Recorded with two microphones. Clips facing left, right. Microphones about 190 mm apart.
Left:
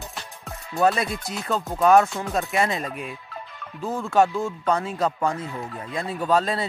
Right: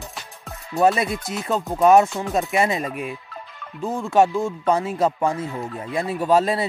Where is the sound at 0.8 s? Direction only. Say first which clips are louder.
Right 3 dB; centre (ahead or behind).